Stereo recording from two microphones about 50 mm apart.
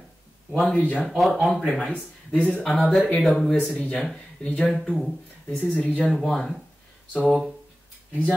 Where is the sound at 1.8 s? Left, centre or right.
Left.